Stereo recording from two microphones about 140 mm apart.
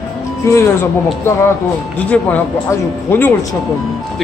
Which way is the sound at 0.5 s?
20° left (ahead or behind).